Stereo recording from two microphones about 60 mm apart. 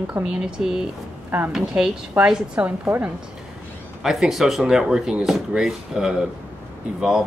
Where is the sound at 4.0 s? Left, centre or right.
Centre.